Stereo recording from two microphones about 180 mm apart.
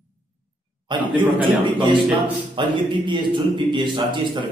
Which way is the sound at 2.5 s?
25° right (ahead or behind).